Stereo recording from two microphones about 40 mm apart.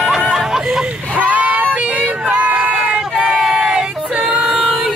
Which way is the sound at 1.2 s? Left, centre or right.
Right.